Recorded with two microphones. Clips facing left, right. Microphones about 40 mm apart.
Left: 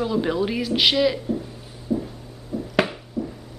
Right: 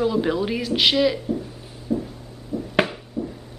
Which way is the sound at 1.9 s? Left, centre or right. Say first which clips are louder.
Even; right.